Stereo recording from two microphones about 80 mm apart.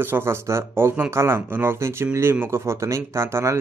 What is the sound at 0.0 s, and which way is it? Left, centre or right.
Speech, right.